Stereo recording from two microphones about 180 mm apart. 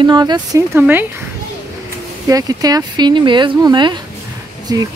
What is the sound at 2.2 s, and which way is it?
Speech, 20° right (ahead or behind).